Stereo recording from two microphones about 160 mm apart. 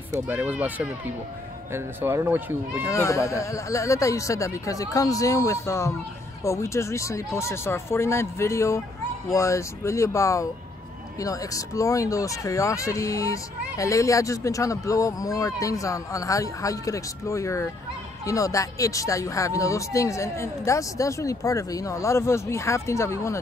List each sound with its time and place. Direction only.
0.3 s speech: 10° right (ahead or behind)
2.9 s speech: 20° left (ahead or behind)